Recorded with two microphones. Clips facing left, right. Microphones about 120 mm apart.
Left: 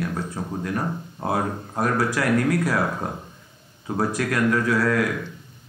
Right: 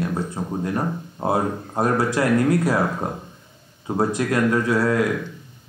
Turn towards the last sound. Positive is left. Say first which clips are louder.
# right 1 dB
turn(degrees=-25)  # may be behind; listen again after turning